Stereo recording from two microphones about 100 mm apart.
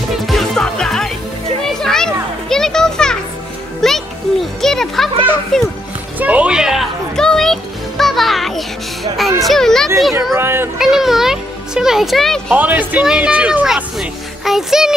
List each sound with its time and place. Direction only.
0.3 s music: 5° left (ahead or behind)
2.5 s children playing: 5° left (ahead or behind)
3.8 s music: 5° left (ahead or behind)
5.5 s a child's voice: 5° left (ahead or behind)
6.1 s a sound: 15° right (ahead or behind); by 7.5 s 5° left (ahead or behind)
8.0 s music: centre (ahead or behind)
10.3 s speech: 25° right (ahead or behind)
10.8 s music: 5° right (ahead or behind)
12.4 s speech: 15° right (ahead or behind)
13.9 s music: centre (ahead or behind)